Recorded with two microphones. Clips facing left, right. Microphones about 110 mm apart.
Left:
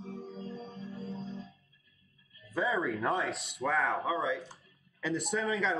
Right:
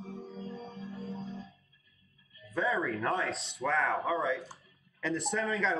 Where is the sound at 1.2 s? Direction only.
30° left (ahead or behind).